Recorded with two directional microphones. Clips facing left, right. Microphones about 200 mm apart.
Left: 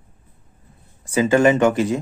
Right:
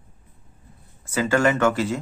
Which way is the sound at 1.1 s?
20° left (ahead or behind).